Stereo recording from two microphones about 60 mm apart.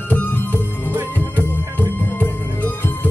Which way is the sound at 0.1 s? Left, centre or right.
Left.